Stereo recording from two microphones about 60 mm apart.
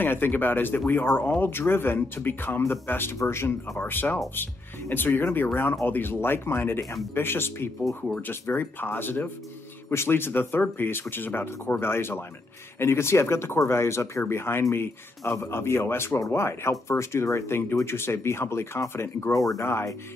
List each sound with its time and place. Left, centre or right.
0.0 s speech: left